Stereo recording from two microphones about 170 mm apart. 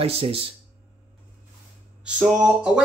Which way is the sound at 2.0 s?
5° right (ahead or behind).